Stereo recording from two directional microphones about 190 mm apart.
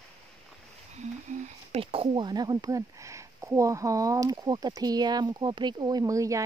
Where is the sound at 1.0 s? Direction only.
40° right (ahead or behind).